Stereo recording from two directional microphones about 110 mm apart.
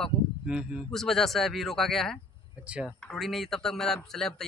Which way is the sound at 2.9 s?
10° left (ahead or behind).